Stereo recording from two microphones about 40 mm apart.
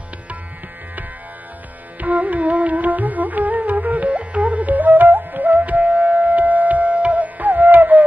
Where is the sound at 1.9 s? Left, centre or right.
Right.